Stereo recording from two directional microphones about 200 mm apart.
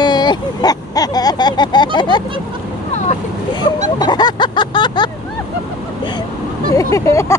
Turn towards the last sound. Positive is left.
turn(degrees=15)  # may be behind; listen again after turning